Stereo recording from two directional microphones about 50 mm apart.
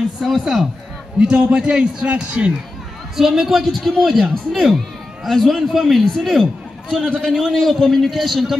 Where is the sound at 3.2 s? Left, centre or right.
Centre.